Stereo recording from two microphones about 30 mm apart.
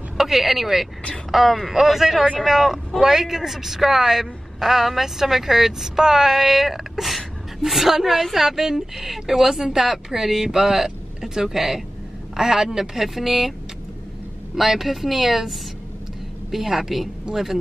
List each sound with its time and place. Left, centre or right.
0.2 s a woman's voice: centre
14.5 s a woman's voice: centre